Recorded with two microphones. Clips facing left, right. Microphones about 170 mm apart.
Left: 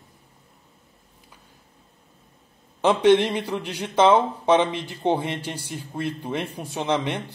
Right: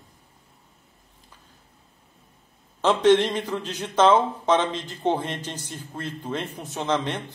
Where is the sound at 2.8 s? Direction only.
10° left (ahead or behind).